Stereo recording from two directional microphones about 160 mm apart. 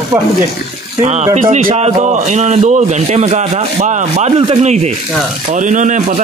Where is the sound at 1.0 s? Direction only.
45° right (ahead or behind).